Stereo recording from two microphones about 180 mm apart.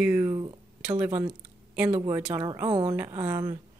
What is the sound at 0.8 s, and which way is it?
Speech, 10° right (ahead or behind).